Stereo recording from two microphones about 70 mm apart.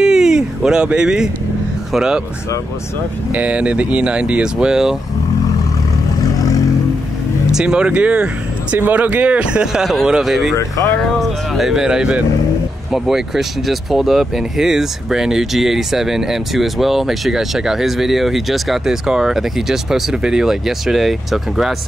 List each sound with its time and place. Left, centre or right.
0.0 s a sound: centre
1.9 s speech: centre
3.3 s speech: centre
6.3 s vehicle: left
7.5 s speech: centre